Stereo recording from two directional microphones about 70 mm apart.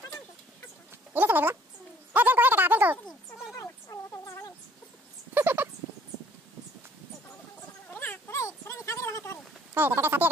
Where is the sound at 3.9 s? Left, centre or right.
Left.